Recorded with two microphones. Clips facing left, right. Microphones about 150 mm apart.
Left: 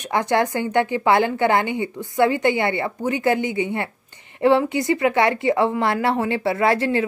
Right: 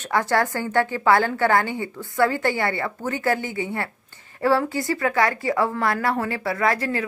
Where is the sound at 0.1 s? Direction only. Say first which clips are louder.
Left 2 dB; 20° left (ahead or behind).